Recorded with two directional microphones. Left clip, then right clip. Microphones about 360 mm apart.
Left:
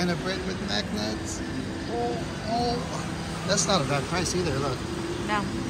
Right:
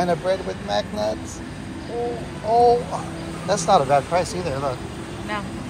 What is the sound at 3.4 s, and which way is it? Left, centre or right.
Speech, centre.